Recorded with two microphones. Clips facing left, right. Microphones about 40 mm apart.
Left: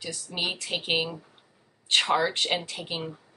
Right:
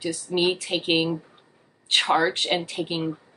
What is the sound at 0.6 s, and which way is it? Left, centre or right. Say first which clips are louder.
Speech: right 5 dB; centre.